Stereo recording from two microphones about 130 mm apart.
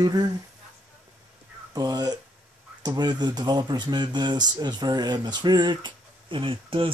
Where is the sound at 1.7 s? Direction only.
30° right (ahead or behind).